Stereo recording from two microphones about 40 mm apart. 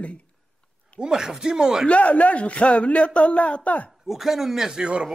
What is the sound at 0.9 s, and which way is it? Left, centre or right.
Speech, centre.